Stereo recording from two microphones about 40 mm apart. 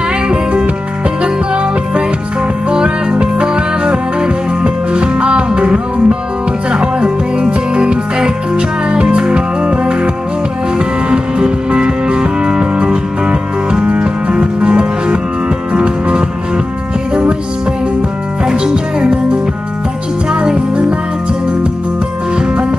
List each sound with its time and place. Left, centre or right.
0.3 s music: right
18.4 s music: centre
20.2 s music: right
22.3 s music: right